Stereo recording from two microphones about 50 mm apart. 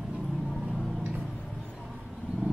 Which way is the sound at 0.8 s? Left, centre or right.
Centre.